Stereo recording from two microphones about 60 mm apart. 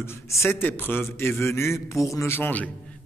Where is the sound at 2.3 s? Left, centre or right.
Left.